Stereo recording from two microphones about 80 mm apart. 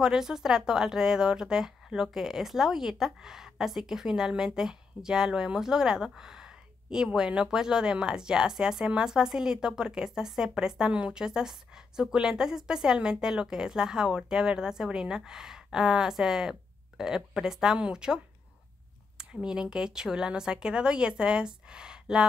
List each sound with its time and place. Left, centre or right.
0.0 s a woman's voice: centre